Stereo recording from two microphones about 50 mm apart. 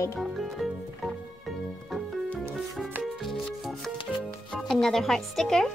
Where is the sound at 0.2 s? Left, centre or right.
Centre.